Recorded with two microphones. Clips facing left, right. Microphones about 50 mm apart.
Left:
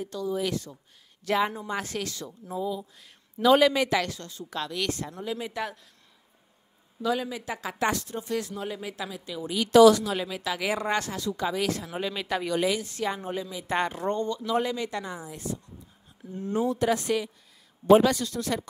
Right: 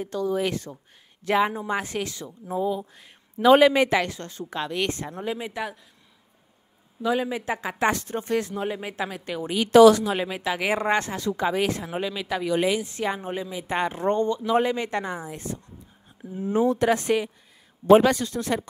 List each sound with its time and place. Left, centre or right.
0.0 s a woman's voice: right
1.2 s speech: centre
2.5 s a woman's voice: right
3.0 s speech: right
5.4 s a man's voice: centre
7.0 s a woman's voice: right
9.1 s a woman's voice: right
9.6 s a woman's voice: right
12.0 s speech: centre
12.5 s a woman's voice: right
16.3 s a man's voice: centre
16.7 s a woman's voice: right